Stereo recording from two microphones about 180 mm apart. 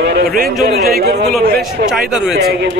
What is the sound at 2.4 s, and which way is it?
Speech, 60° right (ahead or behind).